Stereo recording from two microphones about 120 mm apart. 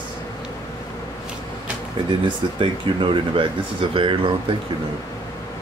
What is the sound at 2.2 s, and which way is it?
Speech, 45° right (ahead or behind).